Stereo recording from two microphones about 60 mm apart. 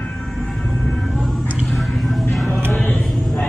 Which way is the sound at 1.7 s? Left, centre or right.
Centre.